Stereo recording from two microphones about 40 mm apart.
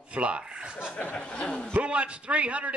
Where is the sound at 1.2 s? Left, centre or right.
Left.